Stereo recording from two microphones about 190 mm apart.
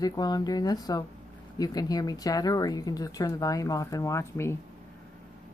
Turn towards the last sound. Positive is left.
turn(degrees=15)  # may be behind; listen again after turning